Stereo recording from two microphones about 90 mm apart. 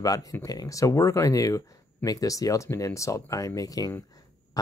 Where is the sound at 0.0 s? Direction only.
40° left (ahead or behind).